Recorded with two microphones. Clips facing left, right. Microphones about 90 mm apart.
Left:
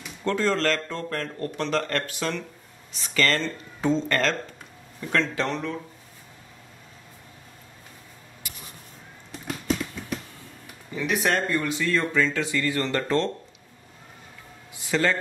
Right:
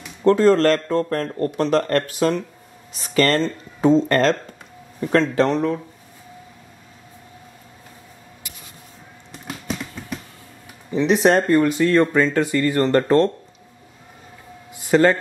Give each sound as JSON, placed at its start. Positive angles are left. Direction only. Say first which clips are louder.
{"t": 0.2, "sound": "speech", "louder": "right 10 dB", "side_deg": -35}
{"t": 10.9, "sound": "speech", "louder": "right 9 dB", "side_deg": -25}
{"t": 11.4, "sound": "speech", "louder": "right 9 dB", "side_deg": -45}
{"t": 14.8, "sound": "speech", "louder": "right 9 dB", "side_deg": -45}